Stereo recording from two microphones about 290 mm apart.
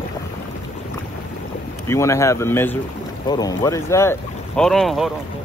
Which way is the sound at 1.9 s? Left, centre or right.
Centre.